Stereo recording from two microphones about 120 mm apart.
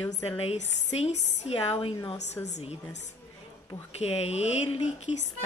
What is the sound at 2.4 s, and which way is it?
Speech, 75° left (ahead or behind).